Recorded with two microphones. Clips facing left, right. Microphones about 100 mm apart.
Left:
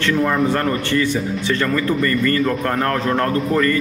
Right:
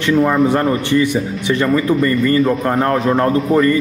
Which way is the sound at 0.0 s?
15° right (ahead or behind).